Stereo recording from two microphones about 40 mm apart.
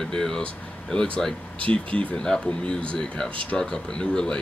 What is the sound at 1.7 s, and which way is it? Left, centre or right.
Speech, left.